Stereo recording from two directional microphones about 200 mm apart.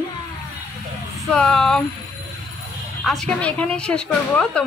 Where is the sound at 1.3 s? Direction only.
5° left (ahead or behind).